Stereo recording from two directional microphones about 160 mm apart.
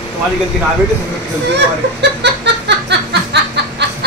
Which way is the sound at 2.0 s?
90° right.